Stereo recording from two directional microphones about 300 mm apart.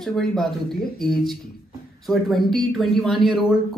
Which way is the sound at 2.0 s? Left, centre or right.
Centre.